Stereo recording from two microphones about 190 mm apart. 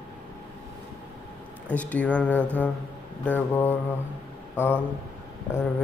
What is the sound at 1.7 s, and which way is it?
Speech, 10° left (ahead or behind).